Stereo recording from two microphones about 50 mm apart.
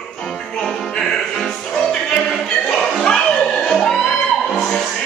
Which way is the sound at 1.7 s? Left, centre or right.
Centre.